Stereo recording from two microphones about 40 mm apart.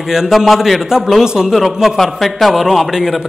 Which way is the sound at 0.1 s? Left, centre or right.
Centre.